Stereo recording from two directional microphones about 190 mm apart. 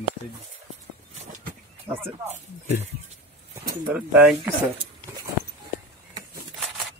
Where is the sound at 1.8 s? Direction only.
10° right (ahead or behind).